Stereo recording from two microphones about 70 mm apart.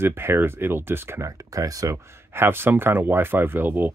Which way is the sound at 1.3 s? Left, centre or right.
Right.